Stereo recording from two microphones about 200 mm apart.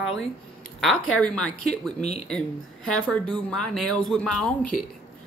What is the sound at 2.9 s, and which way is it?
Speech, 5° left (ahead or behind).